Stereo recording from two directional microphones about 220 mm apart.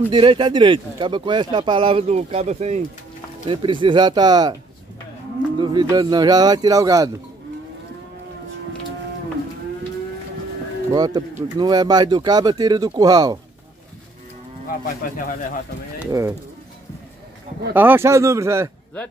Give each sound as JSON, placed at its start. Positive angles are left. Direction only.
{"t": 0.1, "sound": "speech", "side_deg": -20}
{"t": 5.6, "sound": "speech", "side_deg": -20}
{"t": 10.9, "sound": "speech", "side_deg": -20}
{"t": 14.7, "sound": "speech", "side_deg": 40}
{"t": 16.0, "sound": "speech", "side_deg": -15}
{"t": 17.7, "sound": "speech", "side_deg": -10}